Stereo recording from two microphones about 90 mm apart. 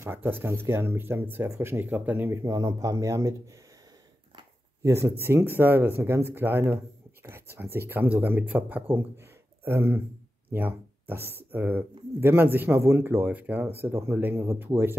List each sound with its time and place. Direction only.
0.0 s speech: 25° right (ahead or behind)
2.4 s speech: 40° right (ahead or behind)
4.8 s speech: 30° right (ahead or behind)